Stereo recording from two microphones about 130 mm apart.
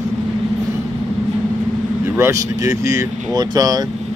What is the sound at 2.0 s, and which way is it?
Speech, 20° right (ahead or behind).